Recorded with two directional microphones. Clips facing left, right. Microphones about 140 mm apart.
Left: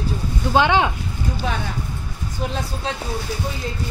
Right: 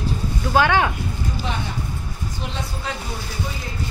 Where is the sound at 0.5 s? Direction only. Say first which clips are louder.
Left 1 dB; 20° left (ahead or behind).